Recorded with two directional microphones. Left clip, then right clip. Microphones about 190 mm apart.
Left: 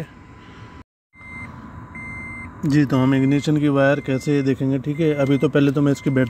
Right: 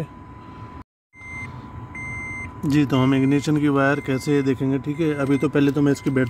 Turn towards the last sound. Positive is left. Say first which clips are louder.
# left 1 dB
turn(degrees=20)  # may be behind; listen again after turning